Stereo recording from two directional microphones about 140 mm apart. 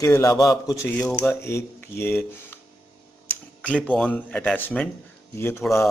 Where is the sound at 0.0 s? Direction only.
25° left (ahead or behind).